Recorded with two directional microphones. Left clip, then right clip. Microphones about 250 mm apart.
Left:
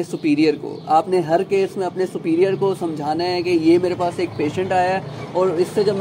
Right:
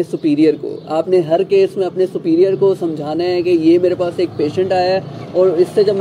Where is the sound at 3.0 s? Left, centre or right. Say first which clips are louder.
Right 4 dB; left.